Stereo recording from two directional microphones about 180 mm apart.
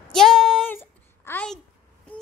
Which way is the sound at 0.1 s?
Centre (ahead or behind).